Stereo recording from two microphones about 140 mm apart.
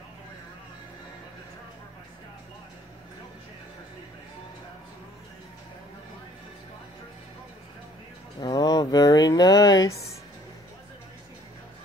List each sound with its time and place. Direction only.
8.4 s speech: 30° left (ahead or behind)